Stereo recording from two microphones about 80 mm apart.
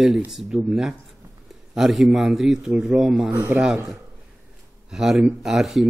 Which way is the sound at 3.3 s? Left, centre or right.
Right.